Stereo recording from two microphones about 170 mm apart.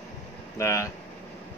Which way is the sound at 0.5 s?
15° left (ahead or behind).